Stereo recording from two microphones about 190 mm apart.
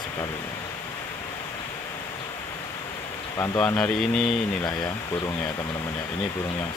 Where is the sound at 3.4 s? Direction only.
10° left (ahead or behind).